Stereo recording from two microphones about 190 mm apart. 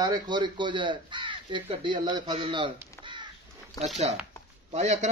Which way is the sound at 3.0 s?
25° right (ahead or behind).